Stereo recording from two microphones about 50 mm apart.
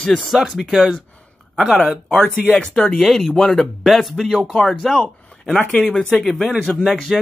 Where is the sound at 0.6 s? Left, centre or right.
Centre.